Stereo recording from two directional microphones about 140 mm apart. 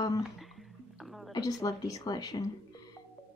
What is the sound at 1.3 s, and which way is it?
A woman's voice, 25° left (ahead or behind).